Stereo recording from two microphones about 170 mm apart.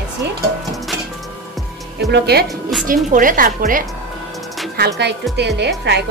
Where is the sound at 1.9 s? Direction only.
75° right (ahead or behind).